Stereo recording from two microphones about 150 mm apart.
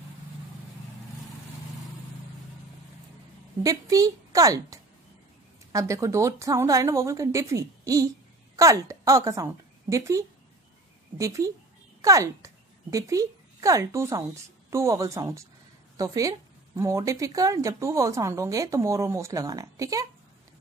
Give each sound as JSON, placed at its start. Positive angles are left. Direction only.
{"t": 3.6, "sound": "a woman's voice", "side_deg": -25}